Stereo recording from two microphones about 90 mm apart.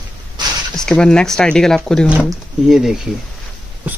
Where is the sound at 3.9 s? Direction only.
15° right (ahead or behind).